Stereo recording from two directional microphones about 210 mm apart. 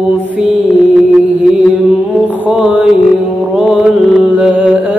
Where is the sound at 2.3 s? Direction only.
5° right (ahead or behind).